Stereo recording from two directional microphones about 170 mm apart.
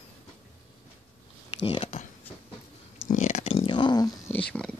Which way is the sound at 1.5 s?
30° left (ahead or behind).